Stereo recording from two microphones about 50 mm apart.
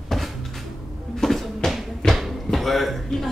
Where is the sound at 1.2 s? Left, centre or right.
Centre.